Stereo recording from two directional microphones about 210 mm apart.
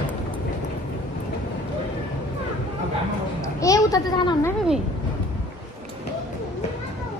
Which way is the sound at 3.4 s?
15° left (ahead or behind).